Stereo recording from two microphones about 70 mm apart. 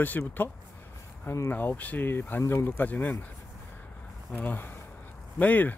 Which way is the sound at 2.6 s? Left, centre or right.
Left.